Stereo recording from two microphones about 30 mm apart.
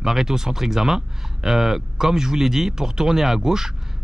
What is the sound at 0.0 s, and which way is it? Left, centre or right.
Speech, centre.